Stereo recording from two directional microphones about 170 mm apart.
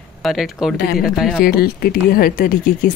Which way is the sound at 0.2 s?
Centre (ahead or behind).